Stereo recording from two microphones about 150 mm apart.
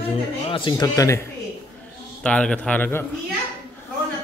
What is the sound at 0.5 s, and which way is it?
Speech, 30° left (ahead or behind).